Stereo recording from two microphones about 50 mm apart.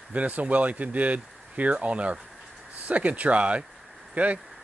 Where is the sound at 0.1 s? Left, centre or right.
Right.